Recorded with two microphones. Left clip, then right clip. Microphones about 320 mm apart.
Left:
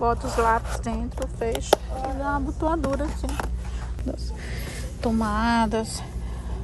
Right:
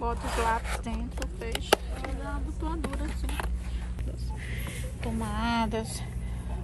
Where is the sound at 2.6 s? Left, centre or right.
Centre.